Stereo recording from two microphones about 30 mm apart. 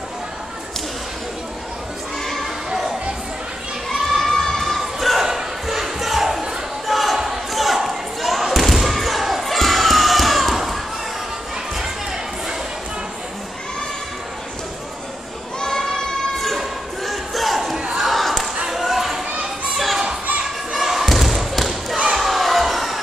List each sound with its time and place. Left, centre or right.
4.0 s crowd: centre
4.4 s crowd: centre
4.7 s a sound: centre
5.7 s crowd: centre
6.9 s a sound: centre
7.5 s basketball bounce: centre
8.6 s thump: centre
16.3 s crowd: centre
17.9 s battle cry: centre
18.7 s basketball bounce: centre
20.7 s basketball bounce: centre
22.2 s a sound: centre